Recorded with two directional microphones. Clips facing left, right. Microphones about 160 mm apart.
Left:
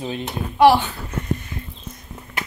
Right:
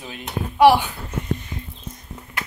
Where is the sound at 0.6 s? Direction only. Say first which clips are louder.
Even; 10° right (ahead or behind).